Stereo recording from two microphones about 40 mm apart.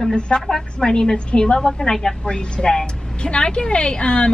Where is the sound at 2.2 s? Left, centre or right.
Left.